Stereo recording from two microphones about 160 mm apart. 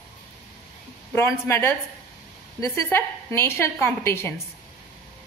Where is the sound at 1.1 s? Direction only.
15° left (ahead or behind).